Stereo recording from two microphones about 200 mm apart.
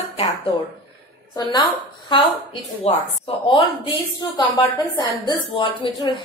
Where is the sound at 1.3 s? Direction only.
20° left (ahead or behind).